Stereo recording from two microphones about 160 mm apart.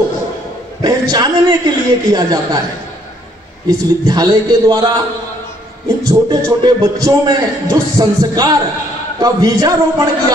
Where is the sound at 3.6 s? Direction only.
25° right (ahead or behind).